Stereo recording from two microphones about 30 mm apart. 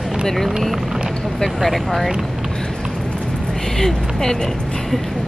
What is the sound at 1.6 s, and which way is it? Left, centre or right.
Speech, centre.